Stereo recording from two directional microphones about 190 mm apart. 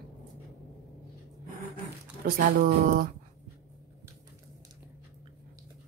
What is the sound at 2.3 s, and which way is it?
Speech, 50° right (ahead or behind).